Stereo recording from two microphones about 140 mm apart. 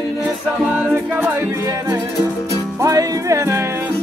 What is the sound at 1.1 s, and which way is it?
Music, 20° right (ahead or behind).